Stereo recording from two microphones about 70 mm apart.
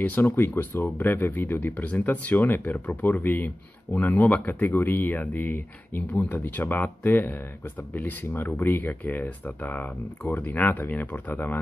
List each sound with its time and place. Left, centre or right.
0.0 s speech: left